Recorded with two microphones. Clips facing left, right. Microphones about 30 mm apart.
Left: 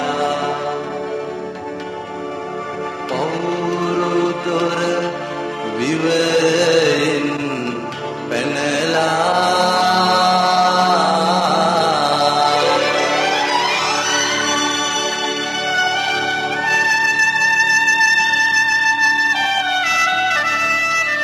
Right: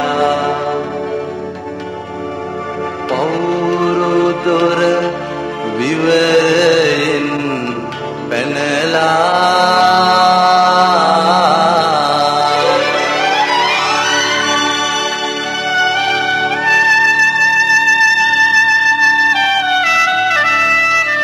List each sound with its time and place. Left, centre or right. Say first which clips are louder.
0.0 s mantra: right 5 dB; right
3.1 s music: right 5 dB; right
3.3 s music: right 5 dB; centre
3.6 s music: right 5 dB; right
4.5 s music: right 6 dB; right
11.1 s music: right 5 dB; right
11.7 s music: right 3 dB; right
12.3 s music: right 2 dB; centre; by 15.1 s right
15.1 s music: right 3 dB; centre
15.8 s music: right 5 dB; right
17.2 s music: right 4 dB; centre
20.3 s music: right 5 dB; right